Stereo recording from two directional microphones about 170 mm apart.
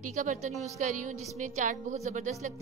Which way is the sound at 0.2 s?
50° right (ahead or behind).